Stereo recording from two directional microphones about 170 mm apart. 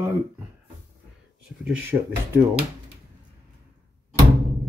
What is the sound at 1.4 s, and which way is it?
Speech, 5° right (ahead or behind).